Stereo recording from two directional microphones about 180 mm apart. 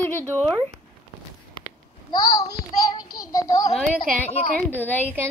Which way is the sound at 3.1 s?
20° left (ahead or behind).